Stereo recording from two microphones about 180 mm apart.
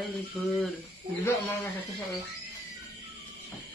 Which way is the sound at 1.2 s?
15° left (ahead or behind).